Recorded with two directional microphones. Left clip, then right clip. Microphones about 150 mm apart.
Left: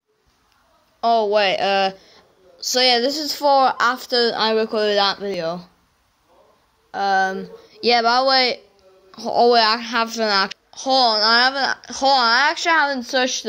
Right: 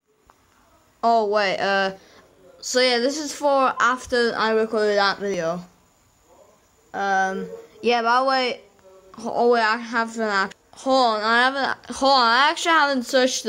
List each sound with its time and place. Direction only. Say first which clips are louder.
1.0 s a woman's voice: left 2 dB; centre (ahead or behind)
6.9 s a woman's voice: left 3 dB; 10° left (ahead or behind)
9.4 s a woman's voice: left 4 dB; 20° left (ahead or behind); by 11.4 s 5° left (ahead or behind)
11.4 s a woman's voice: left 2 dB; 10° right (ahead or behind)